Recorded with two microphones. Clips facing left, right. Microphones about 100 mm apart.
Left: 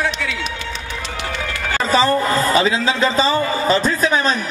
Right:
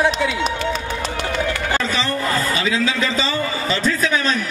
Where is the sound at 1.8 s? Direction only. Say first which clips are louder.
Left 6 dB; 40° left (ahead or behind).